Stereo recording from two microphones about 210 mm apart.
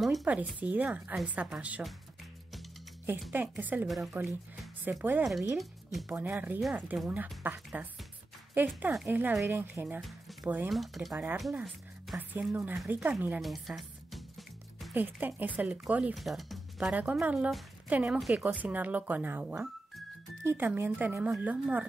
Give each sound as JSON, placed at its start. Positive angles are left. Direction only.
{"t": 0.0, "sound": "a woman's voice", "side_deg": 0}
{"t": 3.1, "sound": "speech", "side_deg": -5}